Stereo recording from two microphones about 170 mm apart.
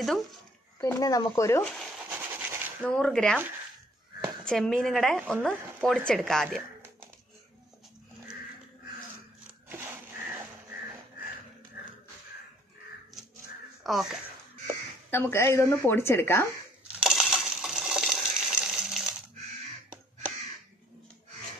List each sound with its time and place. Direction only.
0.8 s speech: 20° left (ahead or behind)
2.0 s a sound: 10° right (ahead or behind)
2.9 s speech: 5° left (ahead or behind)
4.5 s speech: 5° left (ahead or behind)
9.7 s biting: 15° right (ahead or behind)
13.8 s speech: centre (ahead or behind)
15.0 s a woman's voice: 15° left (ahead or behind)
17.0 s coin: 5° right (ahead or behind)